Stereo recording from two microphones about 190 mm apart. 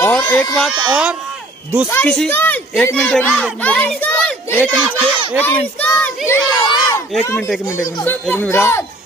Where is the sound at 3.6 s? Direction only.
10° left (ahead or behind).